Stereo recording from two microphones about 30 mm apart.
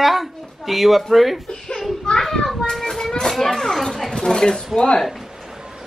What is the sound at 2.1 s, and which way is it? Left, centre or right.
Children playing, centre.